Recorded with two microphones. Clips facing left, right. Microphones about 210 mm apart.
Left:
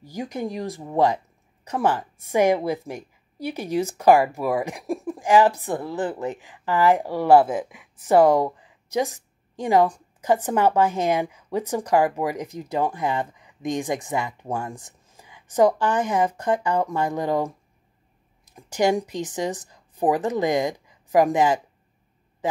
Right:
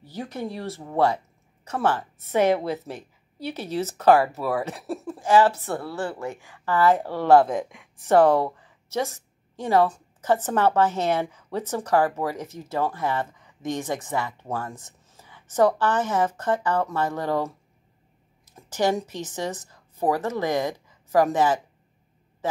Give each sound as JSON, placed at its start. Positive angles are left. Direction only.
{"t": 0.0, "sound": "a man's voice", "side_deg": 15}